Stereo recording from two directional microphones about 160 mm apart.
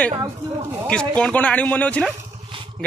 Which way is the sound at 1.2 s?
10° left (ahead or behind).